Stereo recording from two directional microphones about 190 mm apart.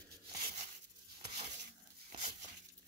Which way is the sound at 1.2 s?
30° right (ahead or behind).